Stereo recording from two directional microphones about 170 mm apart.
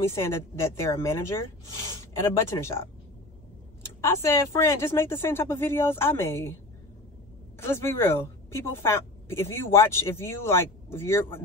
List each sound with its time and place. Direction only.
0.0 s a woman's voice: 15° left (ahead or behind)
7.5 s a woman's voice: 15° left (ahead or behind)